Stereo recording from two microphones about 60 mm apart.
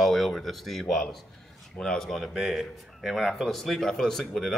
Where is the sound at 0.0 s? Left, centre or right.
Centre.